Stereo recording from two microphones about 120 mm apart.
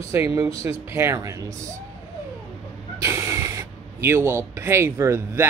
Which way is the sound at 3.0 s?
20° right (ahead or behind).